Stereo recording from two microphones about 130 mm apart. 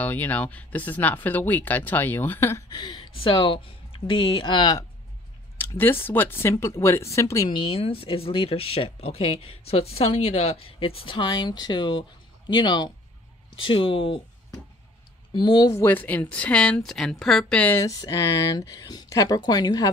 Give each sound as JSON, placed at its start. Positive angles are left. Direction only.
{"t": 0.0, "sound": "speech", "side_deg": 15}
{"t": 2.7, "sound": "speech", "side_deg": 35}
{"t": 5.6, "sound": "speech", "side_deg": 15}
{"t": 7.4, "sound": "speech", "side_deg": 40}
{"t": 15.3, "sound": "speech", "side_deg": 35}
{"t": 15.7, "sound": "speech", "side_deg": 15}
{"t": 17.7, "sound": "speech", "side_deg": 25}